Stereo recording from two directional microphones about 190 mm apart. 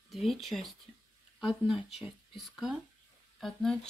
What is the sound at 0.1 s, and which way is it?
Speech, centre (ahead or behind).